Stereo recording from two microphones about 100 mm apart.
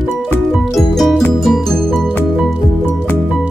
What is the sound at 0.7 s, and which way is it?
Music, centre (ahead or behind).